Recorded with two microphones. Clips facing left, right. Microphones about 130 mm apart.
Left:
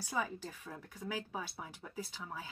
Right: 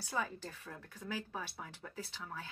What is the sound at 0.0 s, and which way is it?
Speech, 10° left (ahead or behind).